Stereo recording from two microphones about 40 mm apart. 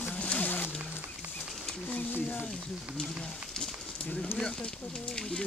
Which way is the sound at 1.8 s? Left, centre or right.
Left.